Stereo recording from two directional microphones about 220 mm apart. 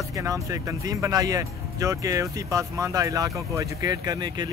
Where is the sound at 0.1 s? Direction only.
15° right (ahead or behind).